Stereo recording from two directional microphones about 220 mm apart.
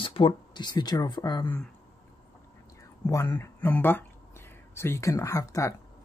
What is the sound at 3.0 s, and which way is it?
Speech, 15° left (ahead or behind).